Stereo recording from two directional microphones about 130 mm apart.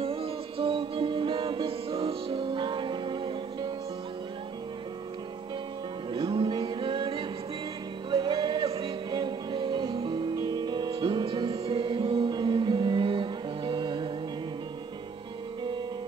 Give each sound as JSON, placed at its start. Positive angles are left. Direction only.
{"t": 0.0, "sound": "music", "side_deg": -45}
{"t": 6.1, "sound": "music", "side_deg": -40}